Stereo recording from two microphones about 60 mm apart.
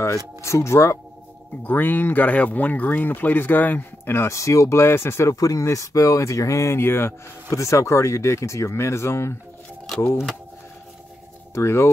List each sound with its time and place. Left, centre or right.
0.4 s speech: left
1.6 s speech: left
5.3 s speech: left
6.8 s speech: left
7.4 s speech: left
11.5 s speech: left